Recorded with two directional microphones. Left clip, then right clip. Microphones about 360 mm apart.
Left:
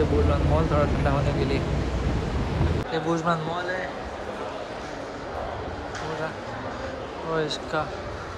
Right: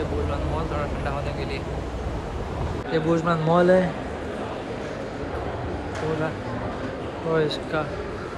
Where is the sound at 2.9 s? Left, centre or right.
Centre.